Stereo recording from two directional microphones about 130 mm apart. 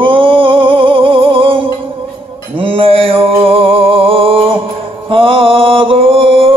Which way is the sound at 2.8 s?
45° right (ahead or behind).